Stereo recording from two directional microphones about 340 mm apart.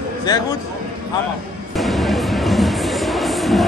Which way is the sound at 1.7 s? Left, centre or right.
Centre.